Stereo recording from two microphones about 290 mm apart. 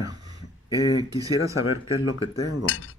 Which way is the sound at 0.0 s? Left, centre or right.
Centre.